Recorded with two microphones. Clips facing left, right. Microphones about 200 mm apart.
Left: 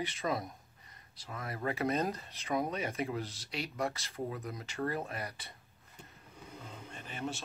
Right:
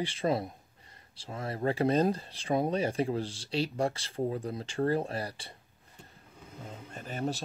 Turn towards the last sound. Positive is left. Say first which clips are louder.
# right 6 dB
turn(degrees=-40)  # may be behind; listen again after turning